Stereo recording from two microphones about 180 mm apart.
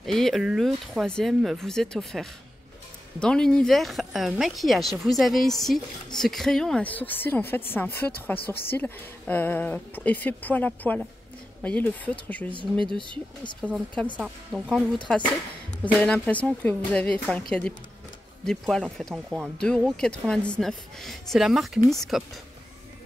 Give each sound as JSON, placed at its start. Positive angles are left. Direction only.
{"t": 0.0, "sound": "a woman's voice", "side_deg": 0}
{"t": 12.8, "sound": "speech", "side_deg": -25}
{"t": 13.6, "sound": "a woman's voice", "side_deg": 5}